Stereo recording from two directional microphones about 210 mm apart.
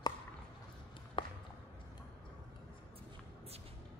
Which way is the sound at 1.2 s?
25° left (ahead or behind).